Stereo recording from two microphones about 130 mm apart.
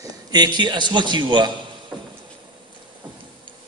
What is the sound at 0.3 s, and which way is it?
A man's voice, 35° right (ahead or behind).